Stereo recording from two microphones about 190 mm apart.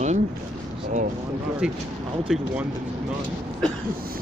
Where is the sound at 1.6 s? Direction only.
5° right (ahead or behind).